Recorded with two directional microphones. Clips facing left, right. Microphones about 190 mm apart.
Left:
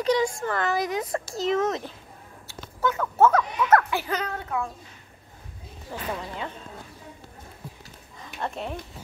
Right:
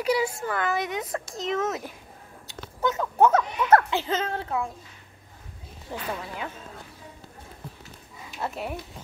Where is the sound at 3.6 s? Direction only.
25° right (ahead or behind).